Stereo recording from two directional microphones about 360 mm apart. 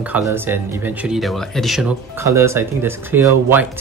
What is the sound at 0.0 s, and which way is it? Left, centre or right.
Speech, centre.